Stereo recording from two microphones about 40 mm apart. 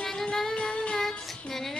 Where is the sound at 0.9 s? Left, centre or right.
Centre.